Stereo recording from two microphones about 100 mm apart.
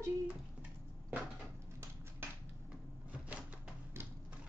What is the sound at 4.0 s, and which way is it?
Typewriter, 25° right (ahead or behind).